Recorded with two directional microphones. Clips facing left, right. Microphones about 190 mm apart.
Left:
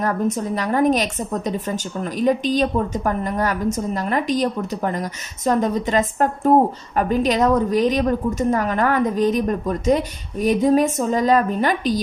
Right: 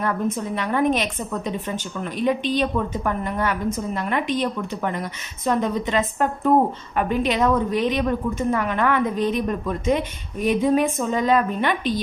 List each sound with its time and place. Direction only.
0.0 s a woman's voice: 40° left (ahead or behind)